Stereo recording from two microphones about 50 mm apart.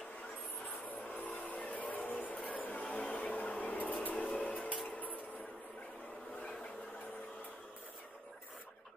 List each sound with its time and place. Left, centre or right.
0.8 s vehicle: left
2.0 s music: left
2.5 s a sound: left